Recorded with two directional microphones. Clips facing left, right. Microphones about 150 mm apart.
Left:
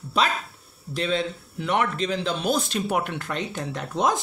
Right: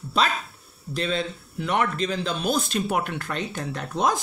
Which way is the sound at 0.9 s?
15° left (ahead or behind).